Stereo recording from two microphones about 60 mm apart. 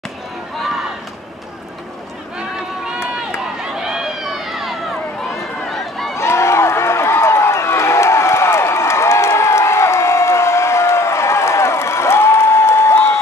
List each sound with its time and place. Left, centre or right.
2.5 s run: centre
6.1 s run: left